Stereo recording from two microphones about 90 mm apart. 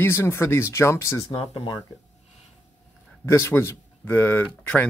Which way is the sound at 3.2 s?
30° left (ahead or behind).